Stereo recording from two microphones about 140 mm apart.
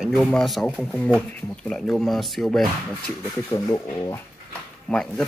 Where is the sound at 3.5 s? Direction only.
25° left (ahead or behind).